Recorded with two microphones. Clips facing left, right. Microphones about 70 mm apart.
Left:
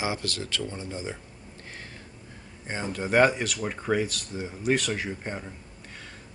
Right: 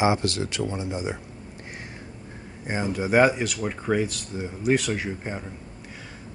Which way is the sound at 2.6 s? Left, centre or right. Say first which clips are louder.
Right 5 dB; centre.